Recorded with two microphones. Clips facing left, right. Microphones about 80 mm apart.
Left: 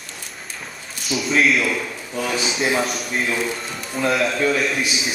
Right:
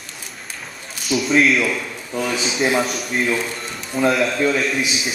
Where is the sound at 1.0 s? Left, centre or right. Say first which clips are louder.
Right 2 dB; centre.